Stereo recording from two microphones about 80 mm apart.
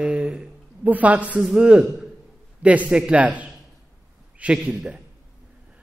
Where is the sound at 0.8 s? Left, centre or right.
Centre.